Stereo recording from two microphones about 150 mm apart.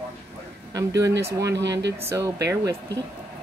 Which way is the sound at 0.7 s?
20° right (ahead or behind).